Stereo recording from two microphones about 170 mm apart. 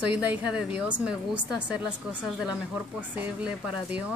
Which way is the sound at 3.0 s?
10° right (ahead or behind).